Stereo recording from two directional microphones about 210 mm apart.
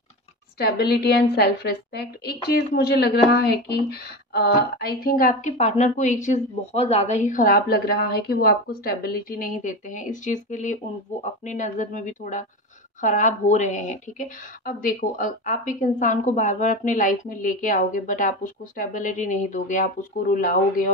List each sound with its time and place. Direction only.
0.6 s a woman's voice: 50° left (ahead or behind)